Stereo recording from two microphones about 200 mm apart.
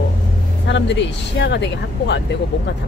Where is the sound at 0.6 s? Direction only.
60° left (ahead or behind).